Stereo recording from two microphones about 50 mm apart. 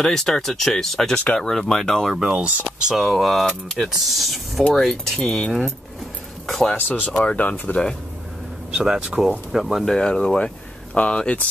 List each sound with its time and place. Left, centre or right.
0.0 s speech: centre
2.1 s speech: centre
2.4 s speech: right
2.8 s speech: centre
6.4 s speech: centre
6.7 s speech: left
8.7 s speech: centre
9.8 s speech: centre